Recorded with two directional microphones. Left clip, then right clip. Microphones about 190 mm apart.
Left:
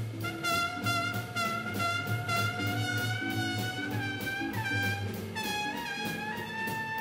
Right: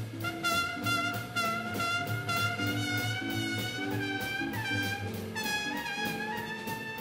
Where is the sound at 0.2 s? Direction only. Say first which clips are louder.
Even; 15° right (ahead or behind).